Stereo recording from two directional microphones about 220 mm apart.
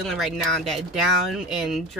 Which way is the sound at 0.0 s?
Centre (ahead or behind).